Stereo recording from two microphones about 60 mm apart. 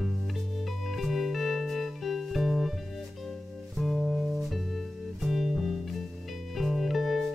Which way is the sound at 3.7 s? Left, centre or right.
Centre.